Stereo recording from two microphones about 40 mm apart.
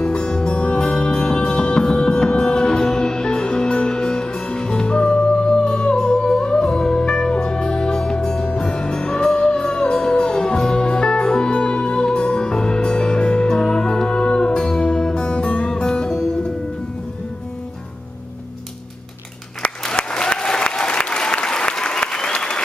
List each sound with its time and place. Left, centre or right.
0.0 s music: left
20.0 s applause: left